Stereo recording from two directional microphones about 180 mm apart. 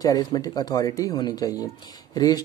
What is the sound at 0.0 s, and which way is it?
Speech, 20° left (ahead or behind).